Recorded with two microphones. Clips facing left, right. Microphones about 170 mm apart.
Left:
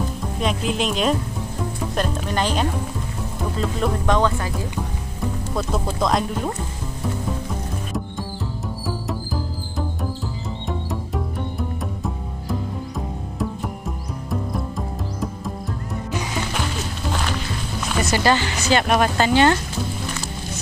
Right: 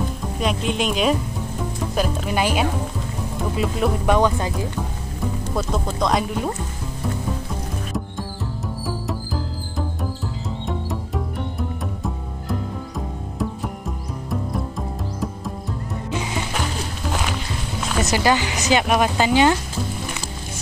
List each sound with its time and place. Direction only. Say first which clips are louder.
0.2 s speech: even; centre (ahead or behind); by 4.6 s 20° right (ahead or behind)
5.2 s speech: right 1 dB; centre (ahead or behind)
8.8 s music: left 1 dB; centre (ahead or behind)
16.1 s music: right 1 dB; 25° right (ahead or behind)
16.5 s music: even; centre (ahead or behind)
18.0 s speech: even; 15° right (ahead or behind)